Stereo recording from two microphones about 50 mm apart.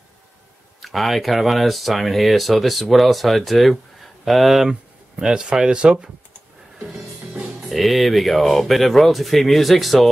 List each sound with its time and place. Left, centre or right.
0.8 s speech: centre
5.1 s speech: centre
7.6 s speech: centre